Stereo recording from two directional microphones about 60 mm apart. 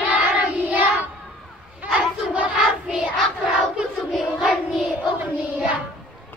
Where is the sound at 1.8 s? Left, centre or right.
Right.